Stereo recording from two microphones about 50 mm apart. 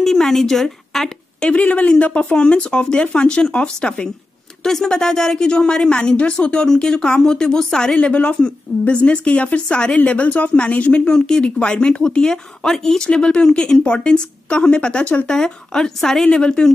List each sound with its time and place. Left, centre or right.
0.0 s speech: centre
1.6 s a woman's voice: left; by 8.0 s centre
8.0 s a woman's voice: left
11.1 s a woman's voice: centre